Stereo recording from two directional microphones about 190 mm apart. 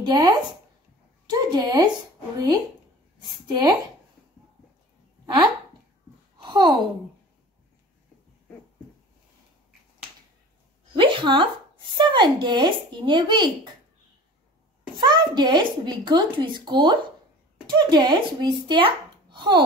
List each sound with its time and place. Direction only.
0.0 s a child's voice: 20° right (ahead or behind)
3.2 s a woman's voice: 20° right (ahead or behind)
5.2 s speech: 20° right (ahead or behind)
6.3 s a sound: 25° right (ahead or behind)
11.0 s speech: 25° right (ahead or behind)
15.0 s a child's voice: 25° right (ahead or behind)